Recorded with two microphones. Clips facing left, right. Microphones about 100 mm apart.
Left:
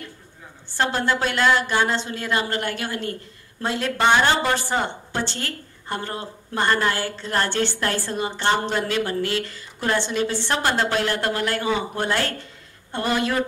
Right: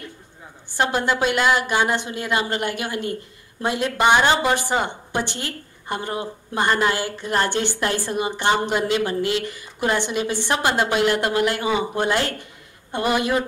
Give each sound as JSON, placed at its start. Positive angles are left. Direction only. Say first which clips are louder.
{"t": 0.7, "sound": "a woman's voice", "louder": "right 1 dB", "side_deg": -15}